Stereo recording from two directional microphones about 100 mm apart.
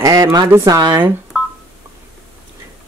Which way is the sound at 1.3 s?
5° right (ahead or behind).